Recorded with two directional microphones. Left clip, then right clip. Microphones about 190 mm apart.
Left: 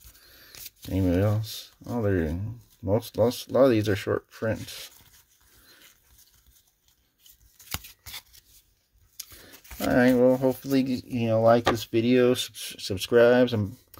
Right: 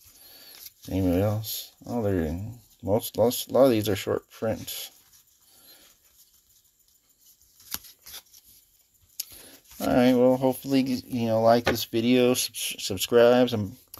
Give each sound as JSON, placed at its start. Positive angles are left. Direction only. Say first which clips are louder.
{"t": 0.2, "sound": "a sound", "louder": "right 3 dB", "side_deg": 25}
{"t": 0.8, "sound": "speech", "louder": "even", "side_deg": 20}
{"t": 9.1, "sound": "speech", "louder": "right 3 dB", "side_deg": 20}